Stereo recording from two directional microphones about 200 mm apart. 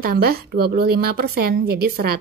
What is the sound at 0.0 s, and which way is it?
Speech, 50° right (ahead or behind).